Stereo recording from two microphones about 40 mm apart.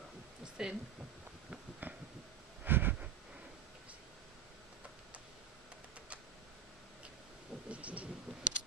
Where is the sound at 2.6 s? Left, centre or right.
Right.